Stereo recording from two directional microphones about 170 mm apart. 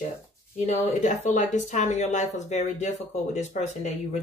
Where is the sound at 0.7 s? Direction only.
45° left (ahead or behind).